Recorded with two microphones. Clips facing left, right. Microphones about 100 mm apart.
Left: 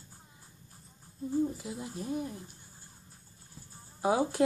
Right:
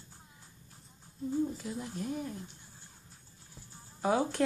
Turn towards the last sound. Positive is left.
turn(degrees=10)  # may be behind; listen again after turning